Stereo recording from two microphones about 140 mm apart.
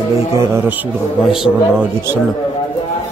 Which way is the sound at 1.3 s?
5° right (ahead or behind).